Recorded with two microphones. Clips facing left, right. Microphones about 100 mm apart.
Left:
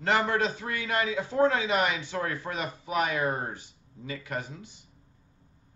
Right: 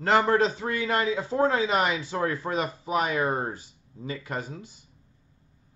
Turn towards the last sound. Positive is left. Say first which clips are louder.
# right 2 dB
turn(degrees=-30)  # may be behind; listen again after turning